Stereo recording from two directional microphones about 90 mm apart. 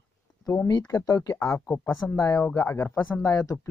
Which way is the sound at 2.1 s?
35° left (ahead or behind).